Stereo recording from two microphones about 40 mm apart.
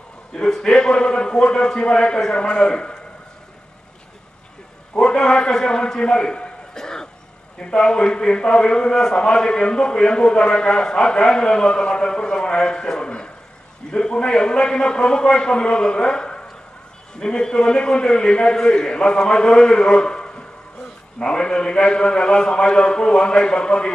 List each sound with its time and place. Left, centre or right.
0.3 s a man's voice: centre
4.9 s a man's voice: left